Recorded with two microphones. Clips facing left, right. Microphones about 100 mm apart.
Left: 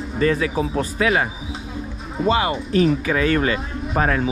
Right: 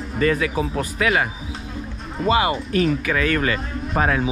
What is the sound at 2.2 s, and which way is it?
Speech, centre (ahead or behind).